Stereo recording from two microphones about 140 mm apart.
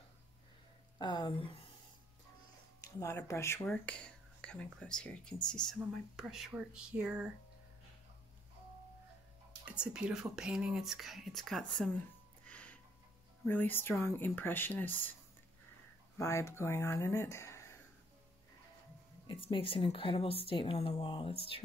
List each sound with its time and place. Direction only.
0.9 s speech: 30° left (ahead or behind)
2.8 s speech: 20° left (ahead or behind)
3.6 s speech: 10° left (ahead or behind); by 7.3 s 5° right (ahead or behind)
9.7 s speech: 5° right (ahead or behind)
12.4 s a sound: 10° left (ahead or behind)
13.5 s speech: 15° left (ahead or behind)
16.2 s speech: 20° left (ahead or behind)
19.2 s speech: 40° left (ahead or behind)